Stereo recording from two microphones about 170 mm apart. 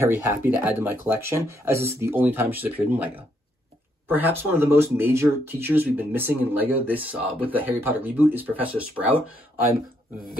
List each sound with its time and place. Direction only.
0.3 s speech: 10° right (ahead or behind)
4.1 s speech: 10° right (ahead or behind)